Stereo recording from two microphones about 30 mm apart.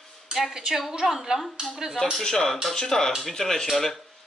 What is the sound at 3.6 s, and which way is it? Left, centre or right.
Speech, centre.